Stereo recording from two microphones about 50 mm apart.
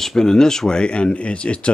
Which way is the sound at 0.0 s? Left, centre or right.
Centre.